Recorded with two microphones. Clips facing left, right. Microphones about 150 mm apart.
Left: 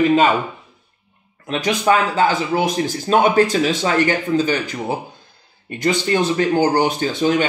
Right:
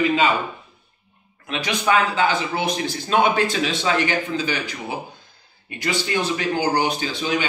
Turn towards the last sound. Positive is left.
turn(degrees=50)  # may be behind; listen again after turning